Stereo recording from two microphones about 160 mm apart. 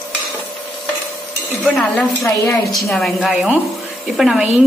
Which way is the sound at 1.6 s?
5° left (ahead or behind).